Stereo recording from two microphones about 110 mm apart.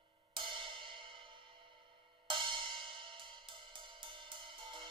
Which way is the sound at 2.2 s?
50° right (ahead or behind).